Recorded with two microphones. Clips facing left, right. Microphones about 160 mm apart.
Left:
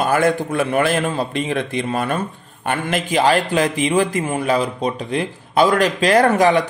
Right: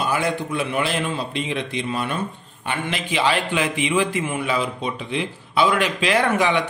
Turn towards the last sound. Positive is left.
turn(degrees=40)  # may be behind; listen again after turning